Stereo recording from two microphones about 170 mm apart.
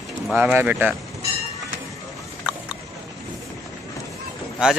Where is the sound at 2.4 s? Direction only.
5° right (ahead or behind).